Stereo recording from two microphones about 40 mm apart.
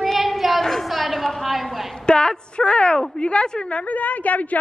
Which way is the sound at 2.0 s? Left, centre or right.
Centre.